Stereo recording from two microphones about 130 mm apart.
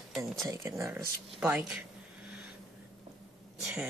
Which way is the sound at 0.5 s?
25° right (ahead or behind).